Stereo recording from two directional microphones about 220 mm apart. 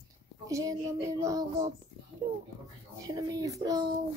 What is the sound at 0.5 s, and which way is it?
A woman's voice, 15° right (ahead or behind).